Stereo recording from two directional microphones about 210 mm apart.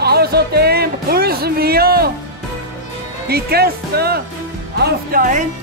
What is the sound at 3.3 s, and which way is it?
A man's voice, 50° right (ahead or behind).